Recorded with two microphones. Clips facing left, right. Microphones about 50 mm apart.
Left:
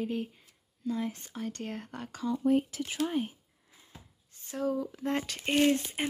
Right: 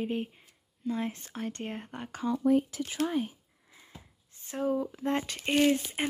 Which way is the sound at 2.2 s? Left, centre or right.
Right.